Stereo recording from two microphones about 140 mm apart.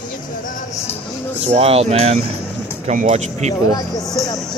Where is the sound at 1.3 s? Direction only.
45° right (ahead or behind).